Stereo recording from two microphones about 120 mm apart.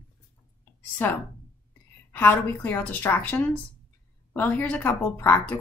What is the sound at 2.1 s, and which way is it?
Speech, 15° left (ahead or behind).